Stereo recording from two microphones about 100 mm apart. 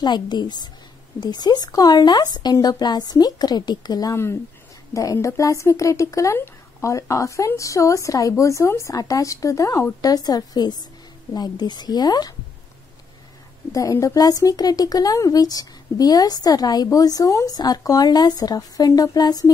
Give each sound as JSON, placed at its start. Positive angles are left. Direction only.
{"t": 0.0, "sound": "a woman's voice", "side_deg": 45}
{"t": 13.7, "sound": "speech", "side_deg": 35}